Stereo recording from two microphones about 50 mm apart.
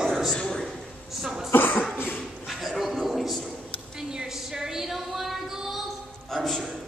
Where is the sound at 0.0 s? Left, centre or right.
Centre.